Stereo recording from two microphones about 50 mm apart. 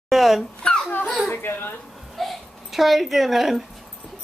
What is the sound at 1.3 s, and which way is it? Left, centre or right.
Speech, left.